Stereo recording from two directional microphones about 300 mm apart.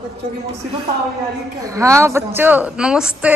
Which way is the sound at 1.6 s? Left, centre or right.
Centre.